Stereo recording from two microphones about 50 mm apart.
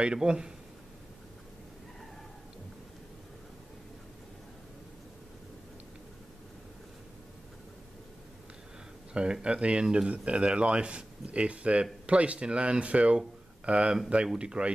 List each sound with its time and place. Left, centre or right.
0.0 s a man's voice: centre
9.1 s speech: centre